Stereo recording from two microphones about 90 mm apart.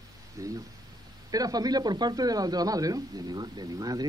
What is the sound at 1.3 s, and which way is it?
A man's voice, 45° right (ahead or behind).